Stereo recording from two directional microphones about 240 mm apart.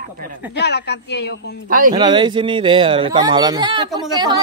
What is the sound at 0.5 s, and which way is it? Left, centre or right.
Speech, left.